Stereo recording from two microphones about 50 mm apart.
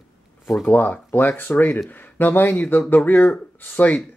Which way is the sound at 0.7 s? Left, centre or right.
Left.